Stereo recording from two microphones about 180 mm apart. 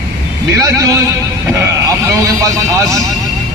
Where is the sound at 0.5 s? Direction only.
20° right (ahead or behind).